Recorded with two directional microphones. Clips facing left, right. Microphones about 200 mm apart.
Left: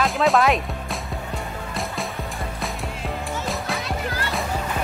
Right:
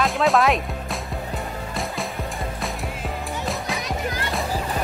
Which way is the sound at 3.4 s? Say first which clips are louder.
Right 1 dB; centre (ahead or behind).